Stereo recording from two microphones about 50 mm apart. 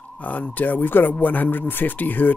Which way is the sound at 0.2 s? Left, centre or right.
Left.